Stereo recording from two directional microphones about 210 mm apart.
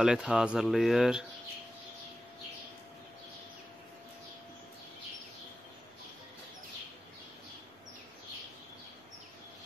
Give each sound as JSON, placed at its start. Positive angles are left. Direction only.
{"t": 0.0, "sound": "speech", "side_deg": -5}